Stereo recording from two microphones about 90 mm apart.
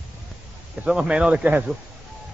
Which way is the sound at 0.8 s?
10° right (ahead or behind).